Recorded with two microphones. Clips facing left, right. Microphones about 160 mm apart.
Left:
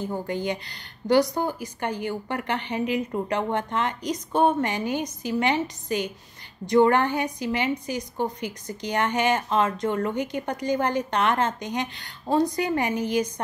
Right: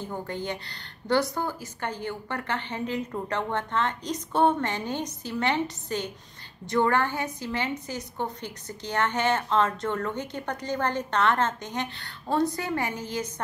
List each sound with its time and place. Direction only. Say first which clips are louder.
0.0 s a woman's voice: left 5 dB; 15° left (ahead or behind)